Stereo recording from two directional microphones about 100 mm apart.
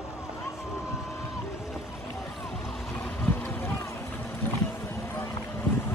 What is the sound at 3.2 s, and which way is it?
Boat, 15° left (ahead or behind).